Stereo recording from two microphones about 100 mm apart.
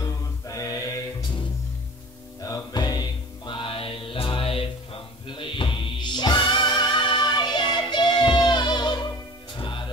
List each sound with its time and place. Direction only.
0.0 s a capella: 35° left (ahead or behind)
2.7 s music: 45° left (ahead or behind)
9.6 s music: 55° left (ahead or behind)